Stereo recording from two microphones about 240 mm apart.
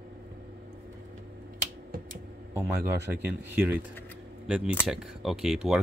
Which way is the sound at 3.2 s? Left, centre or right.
Centre.